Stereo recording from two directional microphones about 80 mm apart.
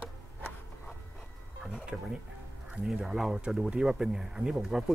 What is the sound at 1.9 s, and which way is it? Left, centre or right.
Speech, centre.